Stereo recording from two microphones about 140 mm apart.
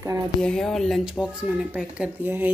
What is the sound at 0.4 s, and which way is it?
Speech, 5° left (ahead or behind).